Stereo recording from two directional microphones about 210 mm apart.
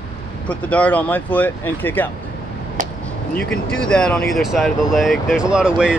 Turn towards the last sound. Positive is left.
turn(degrees=-5)  # may be behind; listen again after turning